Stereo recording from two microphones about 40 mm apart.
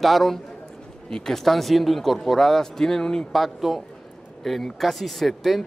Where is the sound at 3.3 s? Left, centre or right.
Centre.